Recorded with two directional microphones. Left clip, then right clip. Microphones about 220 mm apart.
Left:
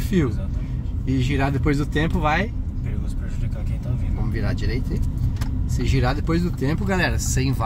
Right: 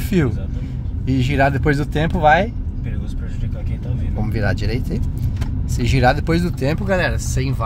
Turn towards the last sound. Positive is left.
turn(degrees=0)  # may be behind; listen again after turning